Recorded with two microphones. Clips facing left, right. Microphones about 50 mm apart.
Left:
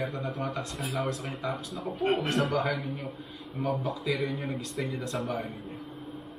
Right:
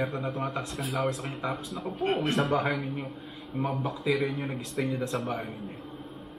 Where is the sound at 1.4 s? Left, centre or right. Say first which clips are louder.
Right 1 dB; right.